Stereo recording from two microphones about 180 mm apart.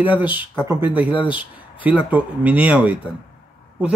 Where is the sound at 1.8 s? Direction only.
10° right (ahead or behind).